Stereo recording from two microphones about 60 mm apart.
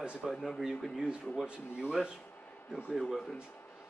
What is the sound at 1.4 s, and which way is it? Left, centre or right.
Speech, centre.